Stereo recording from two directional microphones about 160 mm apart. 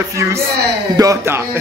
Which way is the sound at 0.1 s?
20° right (ahead or behind).